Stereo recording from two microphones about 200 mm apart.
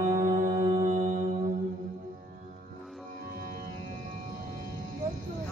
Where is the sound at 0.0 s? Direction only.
45° right (ahead or behind).